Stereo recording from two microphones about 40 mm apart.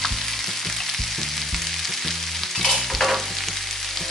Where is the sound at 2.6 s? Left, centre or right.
Centre.